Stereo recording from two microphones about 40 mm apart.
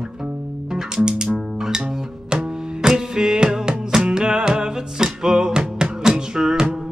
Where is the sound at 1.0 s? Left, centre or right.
Centre.